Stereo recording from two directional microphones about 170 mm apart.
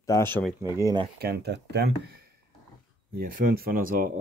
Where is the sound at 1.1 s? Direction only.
70° right (ahead or behind).